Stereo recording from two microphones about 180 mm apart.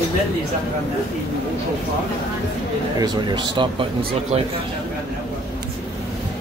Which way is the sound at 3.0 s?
25° right (ahead or behind).